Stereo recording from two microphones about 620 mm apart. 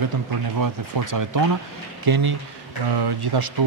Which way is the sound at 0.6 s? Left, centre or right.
Right.